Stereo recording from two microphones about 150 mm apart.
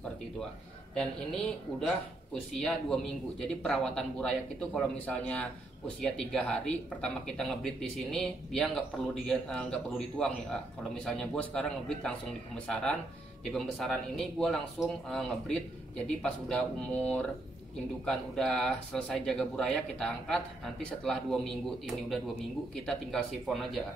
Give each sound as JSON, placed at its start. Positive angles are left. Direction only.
{"t": 2.5, "sound": "speech", "side_deg": 5}